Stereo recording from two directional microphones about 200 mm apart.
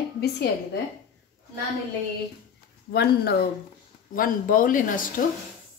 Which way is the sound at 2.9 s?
50° left (ahead or behind).